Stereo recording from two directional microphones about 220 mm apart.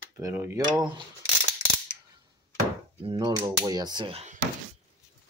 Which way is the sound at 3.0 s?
20° right (ahead or behind).